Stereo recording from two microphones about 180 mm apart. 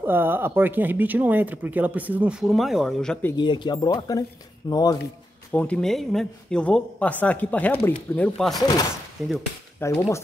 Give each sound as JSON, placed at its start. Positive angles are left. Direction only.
{"t": 0.0, "sound": "speech", "side_deg": -10}
{"t": 3.3, "sound": "speech", "side_deg": 25}
{"t": 5.5, "sound": "speech", "side_deg": 10}
{"t": 9.2, "sound": "speech", "side_deg": 0}
{"t": 9.8, "sound": "speech", "side_deg": 15}